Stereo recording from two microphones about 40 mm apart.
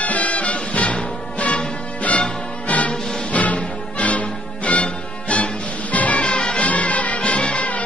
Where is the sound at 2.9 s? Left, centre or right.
Centre.